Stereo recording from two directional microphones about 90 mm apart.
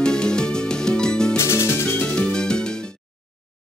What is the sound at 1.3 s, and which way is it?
Music, 30° left (ahead or behind).